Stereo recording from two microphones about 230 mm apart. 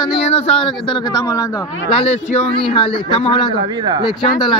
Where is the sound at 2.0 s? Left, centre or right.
Left.